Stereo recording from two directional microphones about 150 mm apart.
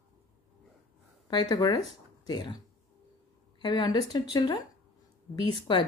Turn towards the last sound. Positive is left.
turn(degrees=35)  # may be behind; listen again after turning